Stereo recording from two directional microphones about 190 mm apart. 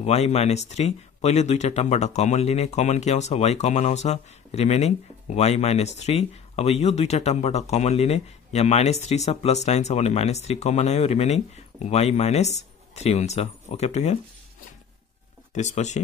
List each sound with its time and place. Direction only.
0.0 s speech: 35° left (ahead or behind)
15.5 s speech: 35° left (ahead or behind)